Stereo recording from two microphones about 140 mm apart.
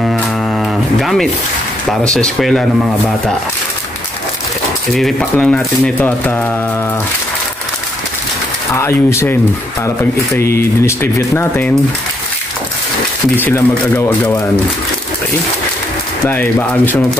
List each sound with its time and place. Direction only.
0.0 s music: centre (ahead or behind)
1.9 s speech: 5° left (ahead or behind)
4.9 s speech: 5° left (ahead or behind)
8.7 s speech: 20° left (ahead or behind)
13.4 s speech: 15° left (ahead or behind)
16.3 s speech: 15° left (ahead or behind)